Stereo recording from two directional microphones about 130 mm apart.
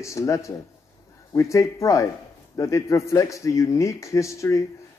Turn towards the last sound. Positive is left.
turn(degrees=25)  # may be behind; listen again after turning